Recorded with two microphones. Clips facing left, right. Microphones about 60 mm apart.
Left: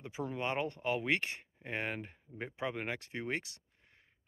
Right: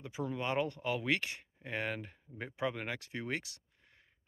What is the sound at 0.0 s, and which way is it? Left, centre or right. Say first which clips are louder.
Speech: even; left.